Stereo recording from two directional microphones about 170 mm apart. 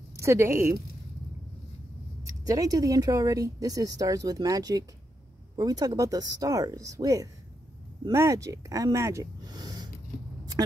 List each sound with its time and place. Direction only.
0.1 s a woman's voice: 15° right (ahead or behind)
2.2 s a woman's voice: 20° right (ahead or behind)